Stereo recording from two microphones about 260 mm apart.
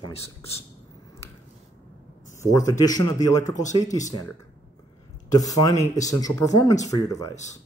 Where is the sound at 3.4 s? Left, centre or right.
Left.